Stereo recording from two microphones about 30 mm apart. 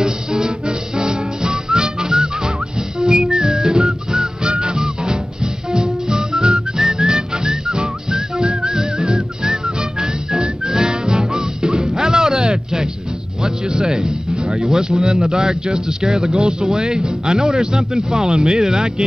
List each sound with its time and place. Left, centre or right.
0.0 s music: right
14.7 s speech: right